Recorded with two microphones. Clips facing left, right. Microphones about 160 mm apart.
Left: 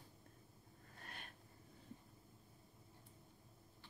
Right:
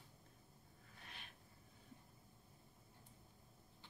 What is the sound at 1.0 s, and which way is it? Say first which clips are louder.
Wheeze: left 3 dB; 50° left (ahead or behind).